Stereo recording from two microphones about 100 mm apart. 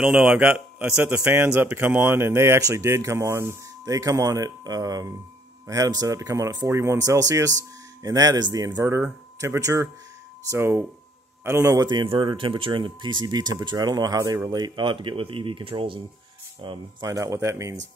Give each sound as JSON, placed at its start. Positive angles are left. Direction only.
{"t": 0.0, "sound": "a man's voice", "side_deg": -10}
{"t": 8.8, "sound": "speech", "side_deg": -25}
{"t": 11.9, "sound": "speech", "side_deg": -50}
{"t": 17.0, "sound": "speech", "side_deg": -30}